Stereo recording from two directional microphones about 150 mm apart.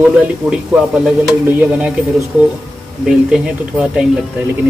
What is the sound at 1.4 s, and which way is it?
Stir, 10° right (ahead or behind).